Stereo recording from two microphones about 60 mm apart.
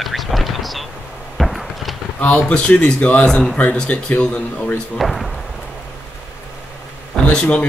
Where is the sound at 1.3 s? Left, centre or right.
Centre.